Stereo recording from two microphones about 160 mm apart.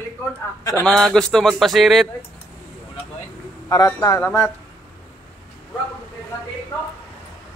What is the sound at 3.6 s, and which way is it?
Speech, 20° left (ahead or behind).